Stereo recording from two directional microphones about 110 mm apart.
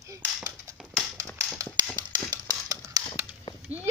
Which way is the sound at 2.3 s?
35° right (ahead or behind).